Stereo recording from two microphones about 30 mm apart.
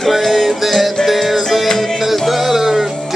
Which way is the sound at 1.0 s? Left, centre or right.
Left.